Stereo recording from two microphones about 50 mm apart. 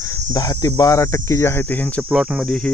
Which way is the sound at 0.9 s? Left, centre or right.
Left.